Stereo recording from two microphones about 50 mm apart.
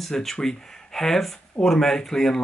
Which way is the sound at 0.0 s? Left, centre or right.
Centre.